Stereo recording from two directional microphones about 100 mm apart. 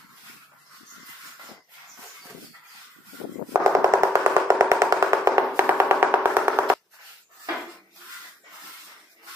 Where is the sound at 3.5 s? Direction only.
30° right (ahead or behind).